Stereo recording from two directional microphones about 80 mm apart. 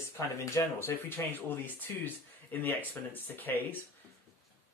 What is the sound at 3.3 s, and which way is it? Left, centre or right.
Speech, left.